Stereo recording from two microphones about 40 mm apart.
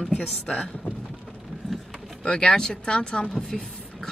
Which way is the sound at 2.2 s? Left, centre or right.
Left.